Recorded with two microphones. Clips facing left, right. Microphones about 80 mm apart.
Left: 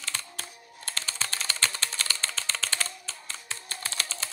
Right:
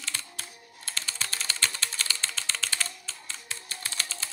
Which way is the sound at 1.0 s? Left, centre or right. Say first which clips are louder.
Left 1 dB; left.